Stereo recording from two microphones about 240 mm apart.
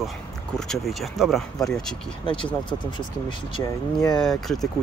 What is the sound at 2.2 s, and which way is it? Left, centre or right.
Speech, centre.